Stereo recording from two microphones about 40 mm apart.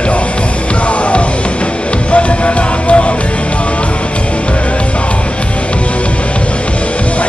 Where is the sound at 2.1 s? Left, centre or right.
Left.